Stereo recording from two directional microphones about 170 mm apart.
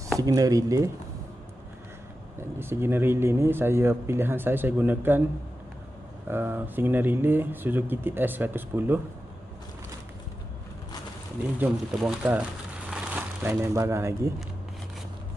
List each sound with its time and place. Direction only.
0.2 s speech: 20° right (ahead or behind)
2.6 s speech: 15° right (ahead or behind)
6.2 s speech: 15° right (ahead or behind)
11.6 s speech: 5° right (ahead or behind)